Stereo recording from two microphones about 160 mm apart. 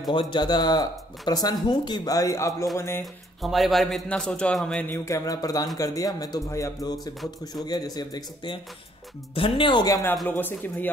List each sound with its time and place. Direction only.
0.1 s speech: 30° left (ahead or behind)
3.4 s a man's voice: centre (ahead or behind); by 10.1 s 25° left (ahead or behind)
10.2 s a man's voice: 10° left (ahead or behind)